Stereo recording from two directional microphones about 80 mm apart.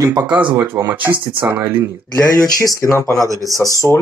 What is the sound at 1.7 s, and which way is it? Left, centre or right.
Speech, right.